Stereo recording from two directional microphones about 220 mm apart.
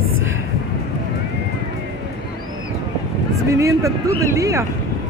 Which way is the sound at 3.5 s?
15° right (ahead or behind).